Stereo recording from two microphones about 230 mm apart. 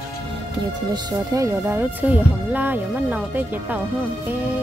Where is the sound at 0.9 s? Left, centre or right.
Centre.